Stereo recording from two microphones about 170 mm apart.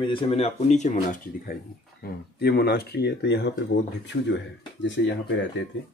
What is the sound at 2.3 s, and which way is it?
Speech, 70° left (ahead or behind).